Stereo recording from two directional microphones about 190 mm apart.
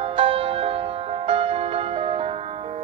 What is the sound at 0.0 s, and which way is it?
Music, 30° right (ahead or behind).